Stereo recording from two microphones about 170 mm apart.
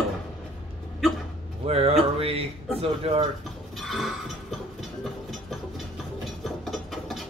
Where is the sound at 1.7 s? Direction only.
35° right (ahead or behind).